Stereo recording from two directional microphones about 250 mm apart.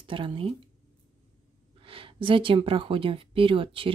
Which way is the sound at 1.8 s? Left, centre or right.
Right.